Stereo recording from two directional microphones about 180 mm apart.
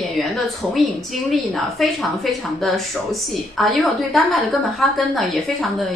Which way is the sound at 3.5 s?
Centre (ahead or behind).